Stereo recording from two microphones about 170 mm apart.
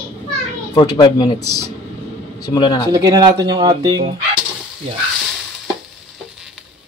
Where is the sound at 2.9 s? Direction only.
25° right (ahead or behind).